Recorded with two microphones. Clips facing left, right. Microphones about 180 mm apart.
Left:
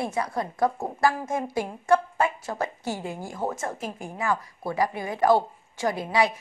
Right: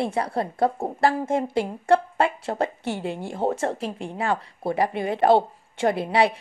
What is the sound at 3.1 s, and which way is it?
A woman's voice, 30° right (ahead or behind).